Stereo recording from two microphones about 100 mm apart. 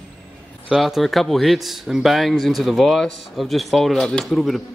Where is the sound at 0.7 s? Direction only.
Centre (ahead or behind).